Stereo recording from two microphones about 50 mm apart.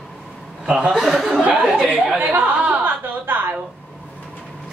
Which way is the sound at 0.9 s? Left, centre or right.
Centre.